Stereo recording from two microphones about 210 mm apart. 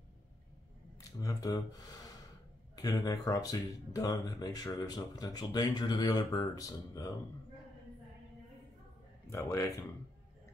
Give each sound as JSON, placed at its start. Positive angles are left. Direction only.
{"t": 1.2, "sound": "speech", "side_deg": 15}
{"t": 9.3, "sound": "speech", "side_deg": 15}